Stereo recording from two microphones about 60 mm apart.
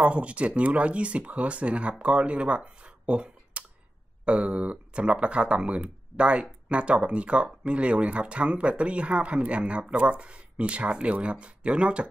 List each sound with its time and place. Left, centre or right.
0.0 s speech: right